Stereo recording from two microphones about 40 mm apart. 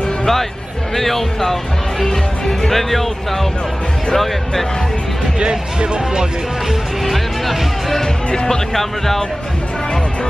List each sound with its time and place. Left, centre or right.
0.2 s a man's voice: centre
2.0 s speech: centre
2.7 s speech: centre
4.1 s speech: centre
5.4 s speech: right
7.1 s speech: centre
8.3 s speech: left
8.7 s speech: centre